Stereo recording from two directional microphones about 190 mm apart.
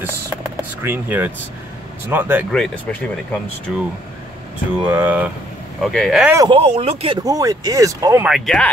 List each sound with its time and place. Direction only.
0.0 s a sound: 10° right (ahead or behind)
2.0 s speech: 10° right (ahead or behind)
2.5 s speech: 5° left (ahead or behind)
4.8 s speech: 10° right (ahead or behind)
6.3 s speech: 20° right (ahead or behind)
6.6 s speech: 30° right (ahead or behind)
7.2 s speech: 20° right (ahead or behind)
8.3 s speech: 5° left (ahead or behind)